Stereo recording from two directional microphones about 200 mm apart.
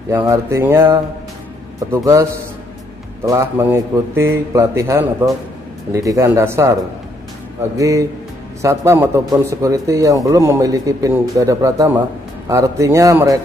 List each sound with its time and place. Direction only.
0.1 s speech: 15° right (ahead or behind)
1.9 s speech: 15° right (ahead or behind)
3.3 s speech: 15° right (ahead or behind)